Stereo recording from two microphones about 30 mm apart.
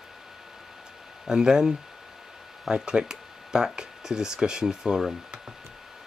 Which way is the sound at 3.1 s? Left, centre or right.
Right.